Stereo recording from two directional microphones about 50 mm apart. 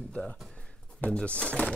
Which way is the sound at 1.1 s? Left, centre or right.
Centre.